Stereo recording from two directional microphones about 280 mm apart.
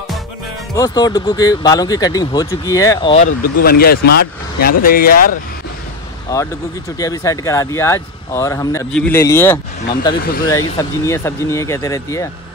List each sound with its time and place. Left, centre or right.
0.7 s speech: centre
3.6 s speech: left
6.3 s speech: centre
10.2 s speech: left
10.5 s speech: centre